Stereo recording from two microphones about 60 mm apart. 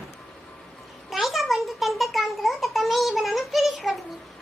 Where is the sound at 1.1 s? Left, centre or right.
Centre.